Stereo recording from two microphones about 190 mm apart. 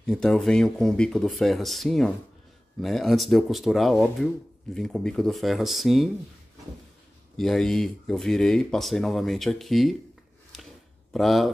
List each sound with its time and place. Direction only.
0.0 s speech: 5° left (ahead or behind)
7.3 s speech: centre (ahead or behind)
11.1 s speech: centre (ahead or behind)